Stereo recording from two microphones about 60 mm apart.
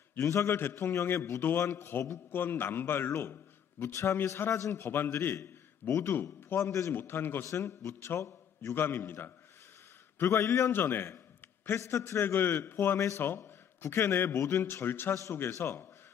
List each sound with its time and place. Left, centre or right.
0.2 s a man's voice: left
1.4 s a man's voice: left
3.8 s a man's voice: left
4.8 s a man's voice: left
6.6 s a man's voice: left
6.9 s a man's voice: left
7.4 s a man's voice: left
10.7 s a man's voice: left
11.8 s a man's voice: left
12.2 s a man's voice: left
13.9 s a man's voice: left